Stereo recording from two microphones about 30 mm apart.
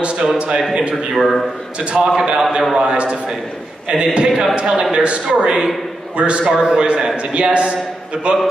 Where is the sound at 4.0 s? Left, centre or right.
Right.